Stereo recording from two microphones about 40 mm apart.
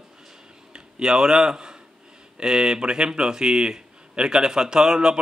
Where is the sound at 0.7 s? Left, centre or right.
Centre.